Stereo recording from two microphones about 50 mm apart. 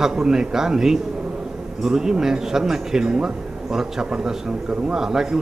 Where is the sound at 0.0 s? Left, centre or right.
Centre.